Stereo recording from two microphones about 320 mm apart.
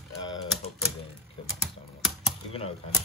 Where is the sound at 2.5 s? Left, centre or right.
Centre.